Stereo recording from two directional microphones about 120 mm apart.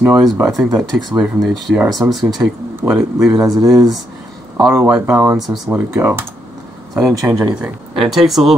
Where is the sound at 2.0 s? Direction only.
15° right (ahead or behind).